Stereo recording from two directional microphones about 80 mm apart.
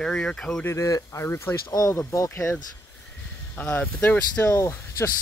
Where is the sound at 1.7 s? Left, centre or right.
Left.